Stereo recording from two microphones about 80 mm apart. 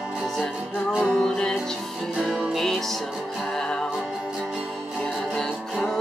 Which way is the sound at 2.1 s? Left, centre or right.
Centre.